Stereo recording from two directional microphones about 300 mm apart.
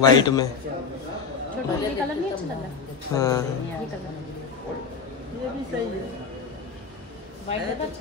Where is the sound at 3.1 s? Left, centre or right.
Centre.